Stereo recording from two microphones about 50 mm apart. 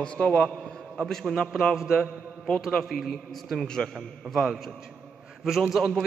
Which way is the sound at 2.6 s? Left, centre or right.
Centre.